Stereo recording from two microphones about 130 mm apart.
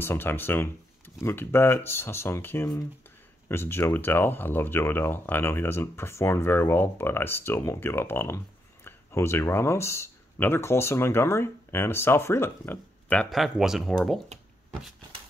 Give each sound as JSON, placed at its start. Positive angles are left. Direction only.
{"t": 0.0, "sound": "speech", "side_deg": 15}
{"t": 13.3, "sound": "speech", "side_deg": 0}